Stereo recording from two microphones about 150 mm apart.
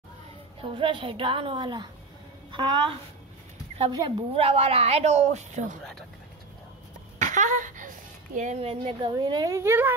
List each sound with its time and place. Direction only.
0.6 s a child's voice: 35° right (ahead or behind)
4.3 s a woman's voice: 40° right (ahead or behind)
7.2 s speech: 55° right (ahead or behind); by 9.9 s 15° right (ahead or behind)